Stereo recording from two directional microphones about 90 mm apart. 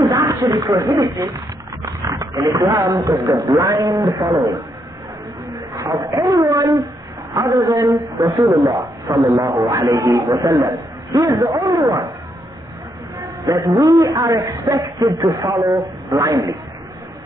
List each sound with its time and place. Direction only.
0.0 s speech: 35° right (ahead or behind)
5.5 s a sound: 40° right (ahead or behind)
6.0 s a woman's voice: 40° right (ahead or behind)
13.5 s speech: 45° right (ahead or behind)